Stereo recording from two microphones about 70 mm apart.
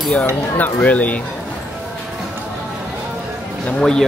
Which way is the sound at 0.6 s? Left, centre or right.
Left.